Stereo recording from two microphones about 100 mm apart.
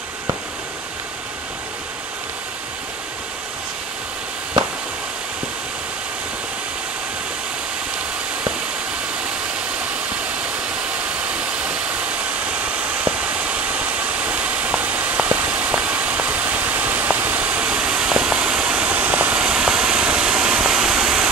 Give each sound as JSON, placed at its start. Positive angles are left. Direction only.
{"t": 11.2, "sound": "vehicle", "side_deg": -15}